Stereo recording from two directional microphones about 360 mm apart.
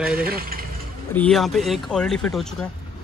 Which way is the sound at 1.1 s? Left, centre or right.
Centre.